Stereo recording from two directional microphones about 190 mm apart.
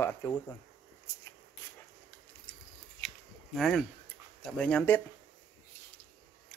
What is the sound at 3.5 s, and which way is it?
Speech, centre (ahead or behind).